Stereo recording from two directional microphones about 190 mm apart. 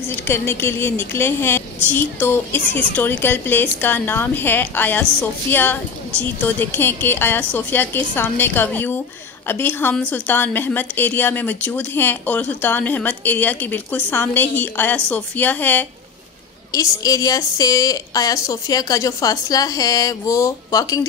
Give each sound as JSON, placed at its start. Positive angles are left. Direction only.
{"t": 0.1, "sound": "a woman's voice", "side_deg": 10}